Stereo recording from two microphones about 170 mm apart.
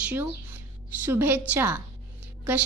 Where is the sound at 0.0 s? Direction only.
10° right (ahead or behind).